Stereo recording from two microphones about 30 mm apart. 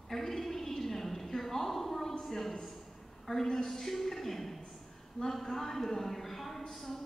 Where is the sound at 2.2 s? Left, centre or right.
Centre.